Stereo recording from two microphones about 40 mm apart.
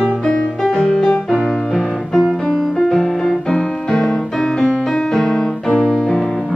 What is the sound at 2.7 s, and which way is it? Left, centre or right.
Music, centre.